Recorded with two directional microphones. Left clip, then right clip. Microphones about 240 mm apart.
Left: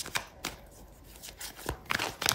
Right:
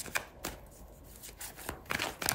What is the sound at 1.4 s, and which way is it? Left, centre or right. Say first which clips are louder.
Scissors: left 4 dB; centre.